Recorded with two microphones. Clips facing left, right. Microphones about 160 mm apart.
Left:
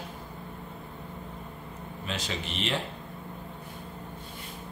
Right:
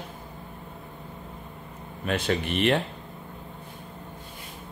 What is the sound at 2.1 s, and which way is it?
Speech, 55° right (ahead or behind).